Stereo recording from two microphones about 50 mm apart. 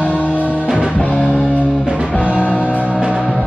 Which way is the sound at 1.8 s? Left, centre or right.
Centre.